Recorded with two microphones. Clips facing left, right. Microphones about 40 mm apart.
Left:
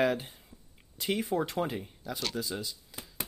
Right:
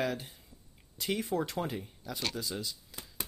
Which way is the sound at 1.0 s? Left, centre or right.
Centre.